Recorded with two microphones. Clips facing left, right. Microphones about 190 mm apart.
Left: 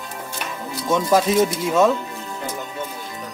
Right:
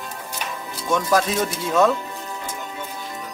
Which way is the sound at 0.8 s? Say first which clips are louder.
Left 2 dB; 25° left (ahead or behind).